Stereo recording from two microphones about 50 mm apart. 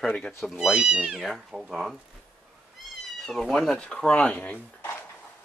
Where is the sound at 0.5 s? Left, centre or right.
Centre.